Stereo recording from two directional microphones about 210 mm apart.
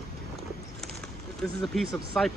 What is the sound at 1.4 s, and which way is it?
Speech, centre (ahead or behind).